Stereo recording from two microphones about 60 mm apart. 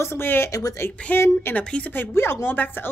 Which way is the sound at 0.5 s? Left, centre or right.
Left.